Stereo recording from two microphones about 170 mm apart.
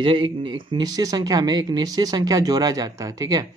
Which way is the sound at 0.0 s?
30° right (ahead or behind).